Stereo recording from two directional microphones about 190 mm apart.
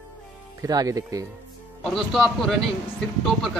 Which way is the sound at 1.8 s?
Centre (ahead or behind).